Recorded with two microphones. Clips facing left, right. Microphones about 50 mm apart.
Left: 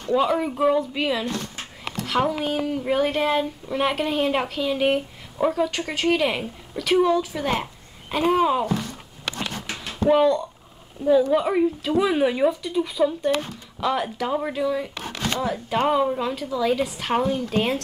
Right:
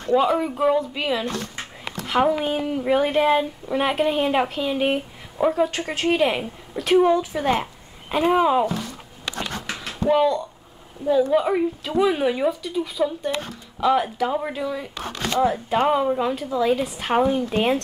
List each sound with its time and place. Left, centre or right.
0.1 s speech: centre
2.0 s a sound: centre
2.4 s speech: centre
10.0 s speech: centre
15.3 s speech: centre
15.7 s speech: centre